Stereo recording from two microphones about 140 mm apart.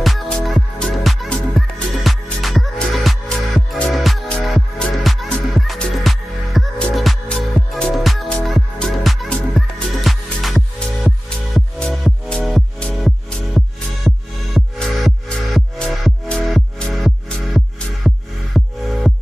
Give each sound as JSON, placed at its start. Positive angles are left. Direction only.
{"t": 0.0, "sound": "music", "side_deg": 0}